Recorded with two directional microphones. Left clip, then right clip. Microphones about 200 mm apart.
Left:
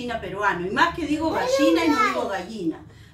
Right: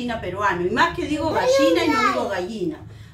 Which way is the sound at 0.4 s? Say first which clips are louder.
Right 2 dB; 5° left (ahead or behind).